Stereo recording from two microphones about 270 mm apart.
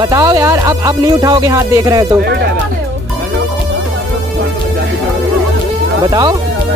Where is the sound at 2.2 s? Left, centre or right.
Right.